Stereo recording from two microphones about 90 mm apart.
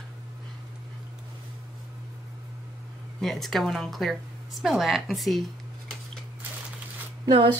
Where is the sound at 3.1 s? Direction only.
5° left (ahead or behind).